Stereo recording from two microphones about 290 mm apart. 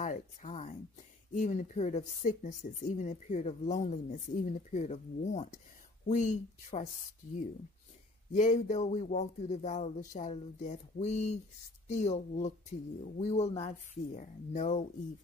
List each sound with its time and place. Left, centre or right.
0.0 s speech: left
8.3 s speech: left